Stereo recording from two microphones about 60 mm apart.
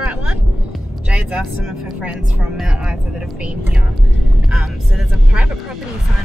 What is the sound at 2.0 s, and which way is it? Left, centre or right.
Speech, right.